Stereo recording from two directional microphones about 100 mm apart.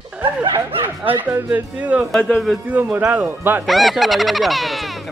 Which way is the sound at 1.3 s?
15° right (ahead or behind).